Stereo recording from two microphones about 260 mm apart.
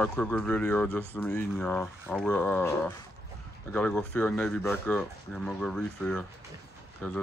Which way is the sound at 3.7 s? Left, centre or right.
Centre.